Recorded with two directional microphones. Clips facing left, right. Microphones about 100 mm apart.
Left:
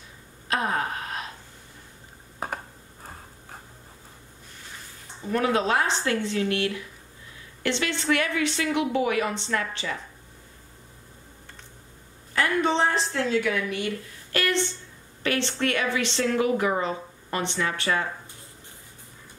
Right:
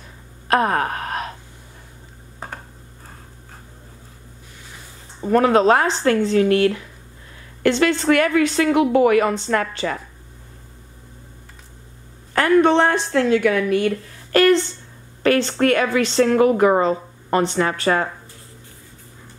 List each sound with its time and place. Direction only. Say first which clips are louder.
0.5 s a sound: right 8 dB; 60° right (ahead or behind)
5.2 s a woman's voice: right 9 dB; 45° right (ahead or behind)
12.4 s a woman's voice: right 9 dB; 55° right (ahead or behind)